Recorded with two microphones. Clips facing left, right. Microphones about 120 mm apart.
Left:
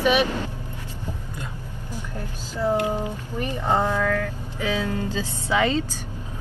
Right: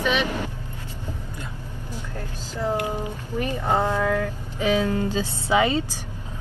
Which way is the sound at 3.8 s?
15° right (ahead or behind).